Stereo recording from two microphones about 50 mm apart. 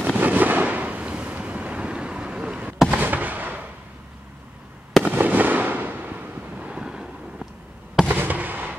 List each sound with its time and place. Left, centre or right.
0.1 s fireworks: right; by 2.7 s centre
2.9 s fireworks: right
5.0 s fireworks: right
6.5 s vehicle: right
8.1 s fireworks: right